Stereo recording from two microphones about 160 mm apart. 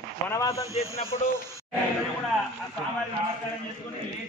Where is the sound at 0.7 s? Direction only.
20° right (ahead or behind).